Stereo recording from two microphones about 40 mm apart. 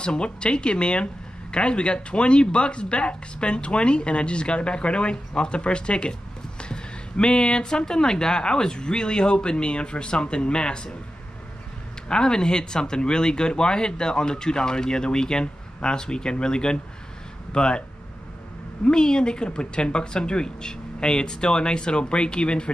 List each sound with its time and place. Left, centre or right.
0.0 s speech: left
12.1 s speech: centre
18.9 s speech: centre